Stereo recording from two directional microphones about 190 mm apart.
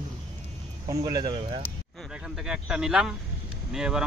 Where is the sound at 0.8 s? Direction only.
20° right (ahead or behind).